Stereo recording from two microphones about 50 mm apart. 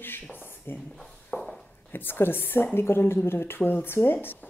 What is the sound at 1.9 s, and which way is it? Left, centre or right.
A woman's voice, left.